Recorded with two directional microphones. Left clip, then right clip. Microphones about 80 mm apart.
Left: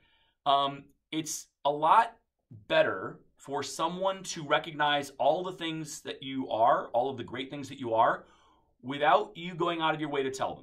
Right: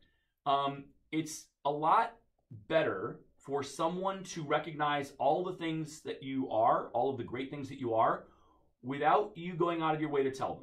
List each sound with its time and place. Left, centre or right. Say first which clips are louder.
0.4 s speech: left 5 dB; centre